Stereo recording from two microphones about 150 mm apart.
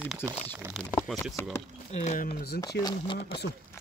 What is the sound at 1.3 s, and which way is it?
Speech, 15° left (ahead or behind).